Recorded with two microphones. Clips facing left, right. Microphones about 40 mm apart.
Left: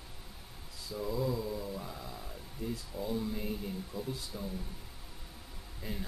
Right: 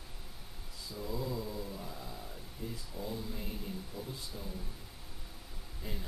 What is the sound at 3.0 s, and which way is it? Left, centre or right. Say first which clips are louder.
Speech: left 5 dB; left.